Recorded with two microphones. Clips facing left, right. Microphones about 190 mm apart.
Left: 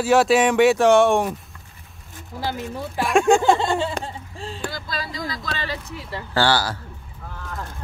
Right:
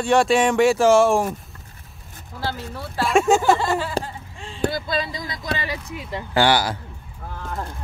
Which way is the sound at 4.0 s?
30° right (ahead or behind).